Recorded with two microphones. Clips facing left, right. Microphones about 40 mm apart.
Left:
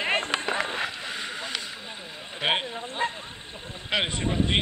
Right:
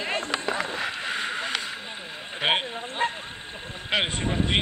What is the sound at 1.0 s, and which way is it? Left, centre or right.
Vehicle, centre.